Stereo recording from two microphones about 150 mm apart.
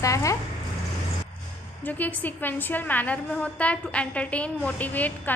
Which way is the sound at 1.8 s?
10° left (ahead or behind).